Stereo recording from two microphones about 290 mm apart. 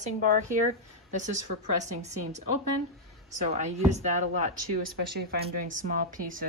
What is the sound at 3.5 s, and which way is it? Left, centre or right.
A woman's voice, right.